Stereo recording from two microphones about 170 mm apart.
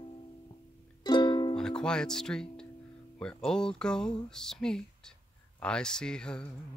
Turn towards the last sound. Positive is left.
turn(degrees=5)  # may be behind; listen again after turning